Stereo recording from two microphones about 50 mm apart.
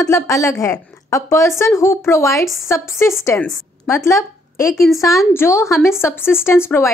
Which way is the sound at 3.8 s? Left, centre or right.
Left.